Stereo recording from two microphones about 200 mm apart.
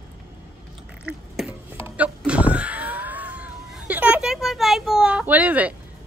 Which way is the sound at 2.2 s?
5° right (ahead or behind).